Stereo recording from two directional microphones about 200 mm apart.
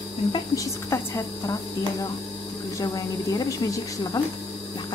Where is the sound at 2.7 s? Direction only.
20° left (ahead or behind).